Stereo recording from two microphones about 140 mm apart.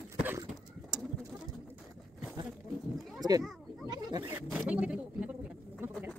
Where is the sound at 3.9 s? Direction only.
30° right (ahead or behind).